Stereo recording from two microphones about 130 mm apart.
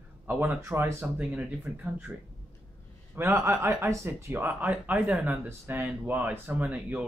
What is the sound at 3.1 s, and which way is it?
Speech, 20° right (ahead or behind).